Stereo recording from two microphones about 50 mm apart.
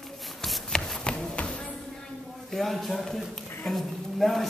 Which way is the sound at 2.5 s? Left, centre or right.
Centre.